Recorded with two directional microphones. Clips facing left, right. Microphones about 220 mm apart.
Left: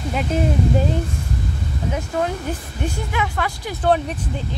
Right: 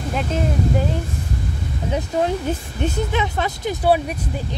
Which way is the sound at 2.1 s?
20° right (ahead or behind).